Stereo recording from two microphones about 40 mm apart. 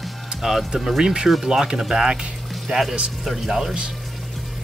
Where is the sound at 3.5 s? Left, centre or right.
Centre.